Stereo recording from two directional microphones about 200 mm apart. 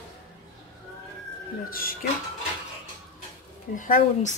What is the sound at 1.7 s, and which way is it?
Speech, 45° left (ahead or behind).